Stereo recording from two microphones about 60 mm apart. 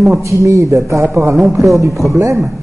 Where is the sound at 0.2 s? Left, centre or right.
Right.